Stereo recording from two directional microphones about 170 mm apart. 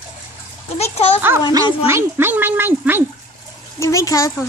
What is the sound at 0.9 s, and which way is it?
Speech, 40° left (ahead or behind).